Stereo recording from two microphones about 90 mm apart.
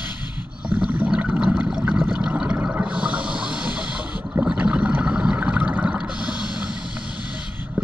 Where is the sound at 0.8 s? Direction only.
15° right (ahead or behind).